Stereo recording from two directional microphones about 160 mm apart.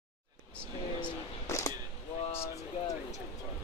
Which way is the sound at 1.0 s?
20° left (ahead or behind).